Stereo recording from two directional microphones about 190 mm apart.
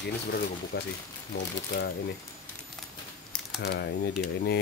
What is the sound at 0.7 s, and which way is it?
Speech, 55° left (ahead or behind).